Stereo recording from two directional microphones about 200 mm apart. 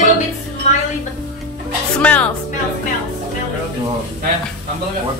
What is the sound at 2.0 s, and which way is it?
Speech, 5° left (ahead or behind).